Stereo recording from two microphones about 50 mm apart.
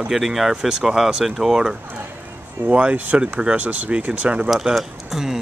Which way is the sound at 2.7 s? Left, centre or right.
Right.